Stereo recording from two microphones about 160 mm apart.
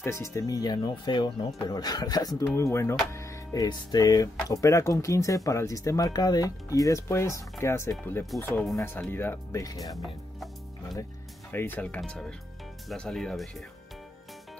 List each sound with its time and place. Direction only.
0.0 s speech: 15° left (ahead or behind)
10.0 s music: centre (ahead or behind)
11.5 s speech: 10° left (ahead or behind)